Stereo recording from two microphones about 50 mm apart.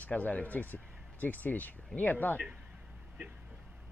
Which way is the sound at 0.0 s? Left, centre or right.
Left.